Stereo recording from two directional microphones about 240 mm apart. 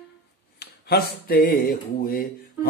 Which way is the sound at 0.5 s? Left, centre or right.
Left.